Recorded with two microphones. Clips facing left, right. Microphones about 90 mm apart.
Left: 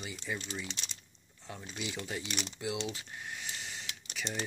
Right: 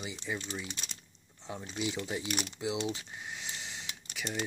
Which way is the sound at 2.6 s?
15° right (ahead or behind).